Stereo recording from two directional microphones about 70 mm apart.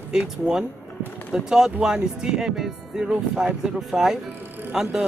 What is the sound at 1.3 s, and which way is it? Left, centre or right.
Speech, centre.